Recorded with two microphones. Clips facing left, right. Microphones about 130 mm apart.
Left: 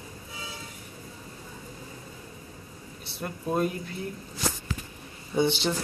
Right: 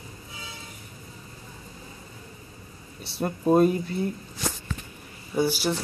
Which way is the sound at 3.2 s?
40° right (ahead or behind).